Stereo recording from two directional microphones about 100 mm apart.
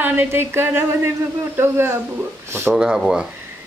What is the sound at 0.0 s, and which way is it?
A woman's voice, 20° right (ahead or behind).